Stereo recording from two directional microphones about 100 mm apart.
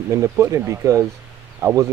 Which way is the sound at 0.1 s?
30° right (ahead or behind).